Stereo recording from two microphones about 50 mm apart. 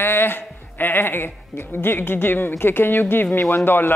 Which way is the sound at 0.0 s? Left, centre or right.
Left.